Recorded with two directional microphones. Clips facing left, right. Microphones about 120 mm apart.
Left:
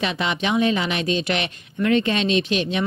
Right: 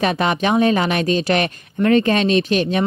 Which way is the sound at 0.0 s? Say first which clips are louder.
Right 6 dB; 45° right (ahead or behind).